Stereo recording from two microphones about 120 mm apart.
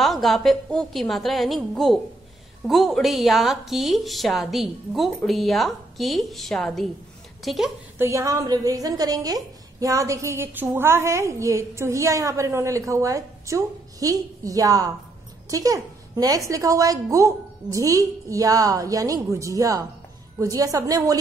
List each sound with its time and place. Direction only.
0.0 s a woman's voice: centre (ahead or behind)
8.0 s a woman's voice: 25° right (ahead or behind)